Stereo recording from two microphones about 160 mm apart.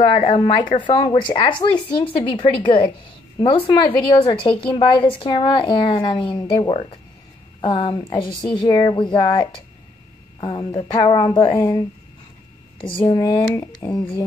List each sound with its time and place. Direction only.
0.0 s a woman's voice: 35° left (ahead or behind)
12.7 s speech: 30° left (ahead or behind)